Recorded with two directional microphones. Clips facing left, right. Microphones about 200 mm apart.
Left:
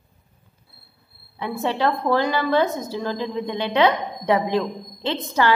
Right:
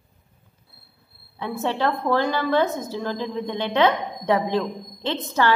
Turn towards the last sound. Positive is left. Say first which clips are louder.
# left 1 dB
turn(degrees=10)  # may be behind; listen again after turning